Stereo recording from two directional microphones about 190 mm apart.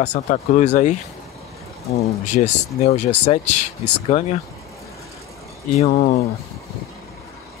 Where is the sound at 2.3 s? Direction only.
40° left (ahead or behind).